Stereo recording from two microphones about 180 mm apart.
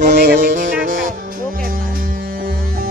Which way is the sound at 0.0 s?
50° right (ahead or behind).